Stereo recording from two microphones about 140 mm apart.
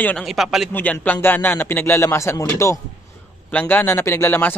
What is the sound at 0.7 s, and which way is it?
Speech, 15° left (ahead or behind).